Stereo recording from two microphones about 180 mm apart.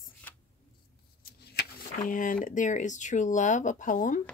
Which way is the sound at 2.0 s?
50° left (ahead or behind).